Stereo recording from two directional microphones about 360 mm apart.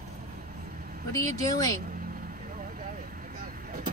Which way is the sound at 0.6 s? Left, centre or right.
Right.